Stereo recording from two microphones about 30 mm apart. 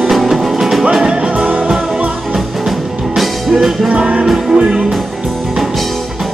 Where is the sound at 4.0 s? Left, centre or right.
Right.